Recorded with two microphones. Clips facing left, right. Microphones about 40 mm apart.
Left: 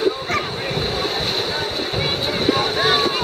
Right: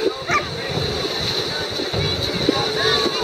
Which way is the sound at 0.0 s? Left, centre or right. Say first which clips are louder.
Even; centre.